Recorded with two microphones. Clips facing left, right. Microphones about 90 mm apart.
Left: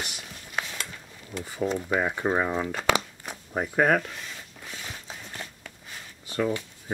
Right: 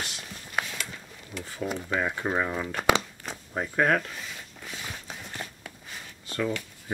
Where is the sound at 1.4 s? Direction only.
15° left (ahead or behind).